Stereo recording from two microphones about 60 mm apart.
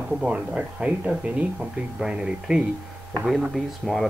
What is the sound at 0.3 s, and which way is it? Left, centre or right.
Speech, right.